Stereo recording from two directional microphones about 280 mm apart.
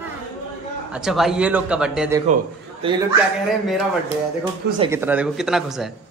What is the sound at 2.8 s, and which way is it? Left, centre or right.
Speech, centre.